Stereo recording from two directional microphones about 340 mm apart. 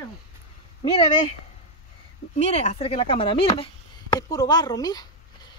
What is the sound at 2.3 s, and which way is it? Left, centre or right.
Speech, centre.